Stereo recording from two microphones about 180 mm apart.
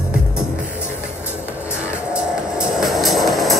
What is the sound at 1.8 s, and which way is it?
Music, 5° right (ahead or behind).